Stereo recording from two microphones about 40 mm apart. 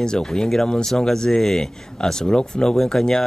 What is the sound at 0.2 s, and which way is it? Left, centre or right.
Speech, centre.